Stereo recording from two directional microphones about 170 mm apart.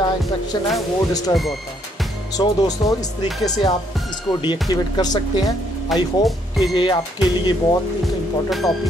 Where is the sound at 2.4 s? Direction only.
20° left (ahead or behind).